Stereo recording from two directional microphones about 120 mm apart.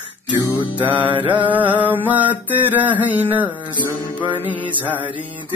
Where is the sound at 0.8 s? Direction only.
15° right (ahead or behind).